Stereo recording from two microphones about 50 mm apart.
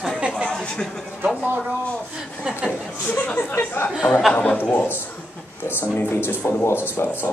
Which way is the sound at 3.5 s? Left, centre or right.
Left.